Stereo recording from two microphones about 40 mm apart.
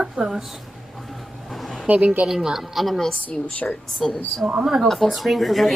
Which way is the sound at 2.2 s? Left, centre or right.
Right.